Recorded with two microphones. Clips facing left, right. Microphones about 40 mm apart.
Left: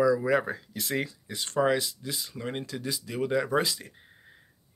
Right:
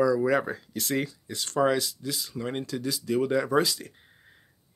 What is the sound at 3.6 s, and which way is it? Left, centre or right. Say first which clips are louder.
Speech: right 3 dB; centre.